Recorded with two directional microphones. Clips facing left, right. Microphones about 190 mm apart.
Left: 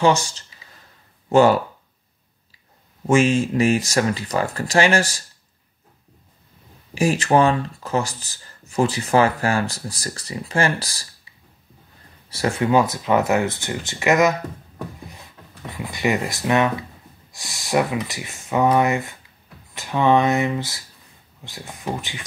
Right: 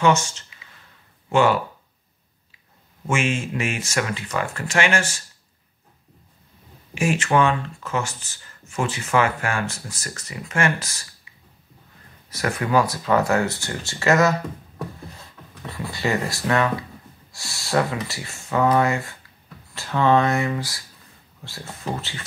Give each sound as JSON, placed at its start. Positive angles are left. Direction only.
{"t": 0.0, "sound": "speech", "side_deg": 35}
{"t": 3.1, "sound": "speech", "side_deg": 35}
{"t": 6.9, "sound": "speech", "side_deg": 35}
{"t": 12.3, "sound": "speech", "side_deg": 25}
{"t": 15.8, "sound": "speech", "side_deg": 15}